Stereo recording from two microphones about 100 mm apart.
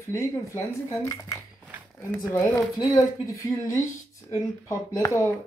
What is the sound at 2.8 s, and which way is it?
Speech, 40° left (ahead or behind).